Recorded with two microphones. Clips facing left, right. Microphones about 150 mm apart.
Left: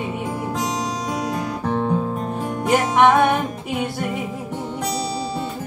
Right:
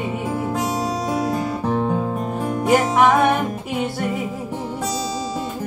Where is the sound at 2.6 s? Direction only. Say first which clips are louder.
Even; centre (ahead or behind).